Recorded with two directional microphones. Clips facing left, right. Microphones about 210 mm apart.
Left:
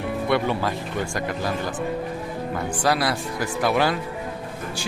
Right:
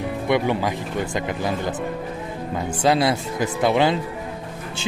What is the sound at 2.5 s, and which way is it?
Speech, 20° right (ahead or behind).